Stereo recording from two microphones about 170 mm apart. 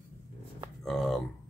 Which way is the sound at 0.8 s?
Centre (ahead or behind).